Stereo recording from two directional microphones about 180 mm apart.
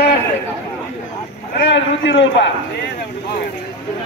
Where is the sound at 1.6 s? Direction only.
85° left.